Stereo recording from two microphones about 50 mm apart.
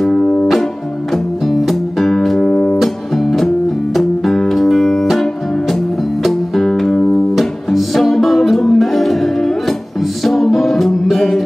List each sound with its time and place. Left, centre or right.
0.0 s music: centre
1.1 s music: centre
2.4 s music: centre
2.8 s music: centre